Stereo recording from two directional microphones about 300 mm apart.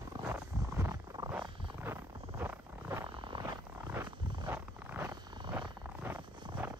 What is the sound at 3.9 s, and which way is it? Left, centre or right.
Wild animals, centre.